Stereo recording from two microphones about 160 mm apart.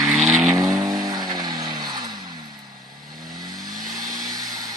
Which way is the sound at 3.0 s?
25° right (ahead or behind).